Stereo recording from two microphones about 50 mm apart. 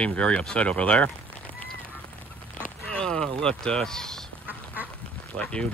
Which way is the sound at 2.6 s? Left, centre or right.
Centre.